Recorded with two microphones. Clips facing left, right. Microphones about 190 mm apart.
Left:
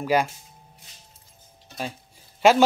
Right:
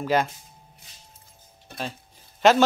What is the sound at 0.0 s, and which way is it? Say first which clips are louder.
Speech: left 1 dB; 10° left (ahead or behind).